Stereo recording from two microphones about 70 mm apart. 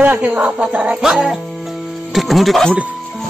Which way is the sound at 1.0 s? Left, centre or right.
Centre.